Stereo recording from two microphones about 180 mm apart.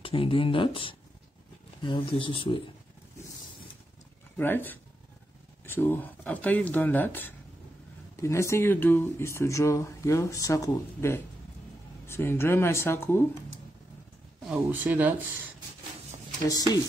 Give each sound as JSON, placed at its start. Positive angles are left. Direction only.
{"t": 0.0, "sound": "speech", "side_deg": 30}
{"t": 4.4, "sound": "speech", "side_deg": 10}
{"t": 14.5, "sound": "speech", "side_deg": -10}